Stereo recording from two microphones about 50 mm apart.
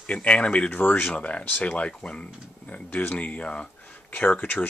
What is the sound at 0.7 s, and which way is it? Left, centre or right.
Speech, left.